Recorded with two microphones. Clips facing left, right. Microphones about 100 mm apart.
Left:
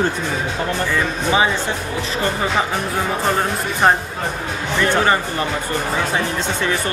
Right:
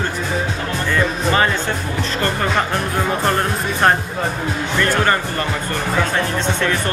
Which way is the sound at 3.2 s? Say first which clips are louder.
Right 1 dB; 5° left (ahead or behind).